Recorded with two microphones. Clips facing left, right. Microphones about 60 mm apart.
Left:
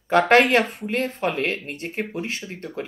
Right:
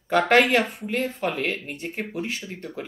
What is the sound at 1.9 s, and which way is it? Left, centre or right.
Speech, left.